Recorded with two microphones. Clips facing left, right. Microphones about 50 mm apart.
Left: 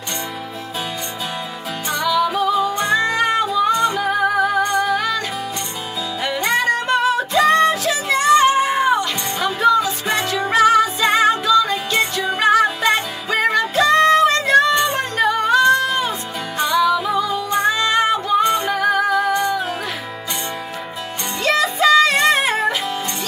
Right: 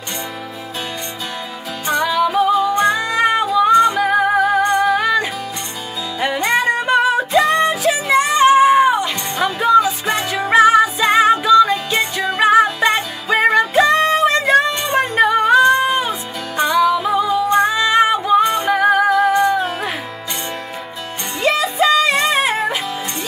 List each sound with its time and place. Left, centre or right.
2.0 s music: centre
3.1 s music: centre
4.0 s music: right
6.2 s music: centre
10.5 s music: right; by 12.4 s centre
12.4 s music: centre
18.4 s music: centre
18.8 s music: right
19.1 s music: centre
21.4 s music: centre